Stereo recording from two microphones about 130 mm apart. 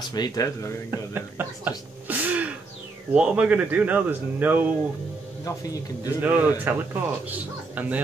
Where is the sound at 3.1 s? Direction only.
10° right (ahead or behind).